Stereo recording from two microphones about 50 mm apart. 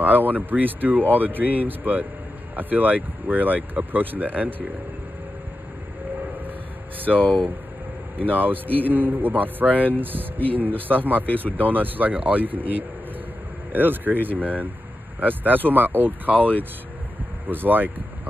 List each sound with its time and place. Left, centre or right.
0.0 s a man's voice: right
8.2 s a man's voice: right